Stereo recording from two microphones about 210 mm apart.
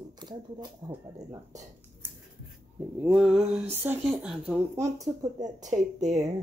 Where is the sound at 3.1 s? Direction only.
Centre (ahead or behind).